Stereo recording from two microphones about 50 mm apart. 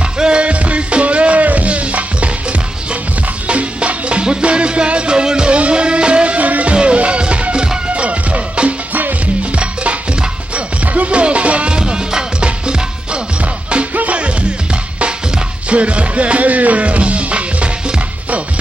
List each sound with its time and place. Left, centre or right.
0.2 s music: right
3.4 s music: right